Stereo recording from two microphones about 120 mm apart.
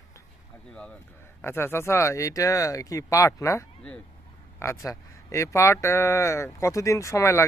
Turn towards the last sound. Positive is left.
turn(degrees=25)  # may be behind; listen again after turning